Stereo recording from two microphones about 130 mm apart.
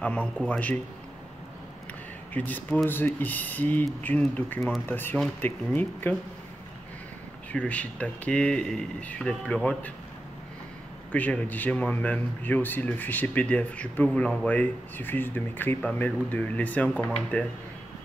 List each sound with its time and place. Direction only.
0.0 s a man's voice: 10° left (ahead or behind)
2.3 s a man's voice: 15° left (ahead or behind)
7.5 s a man's voice: 10° left (ahead or behind)
11.1 s a man's voice: 10° left (ahead or behind)